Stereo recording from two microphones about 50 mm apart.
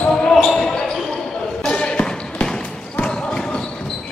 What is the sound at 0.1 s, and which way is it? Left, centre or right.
Basketball bounce, centre.